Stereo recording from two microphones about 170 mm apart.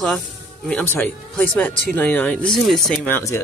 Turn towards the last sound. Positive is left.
turn(degrees=15)  # may be behind; listen again after turning